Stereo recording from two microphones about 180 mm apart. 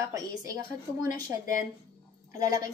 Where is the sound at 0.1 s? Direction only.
20° right (ahead or behind).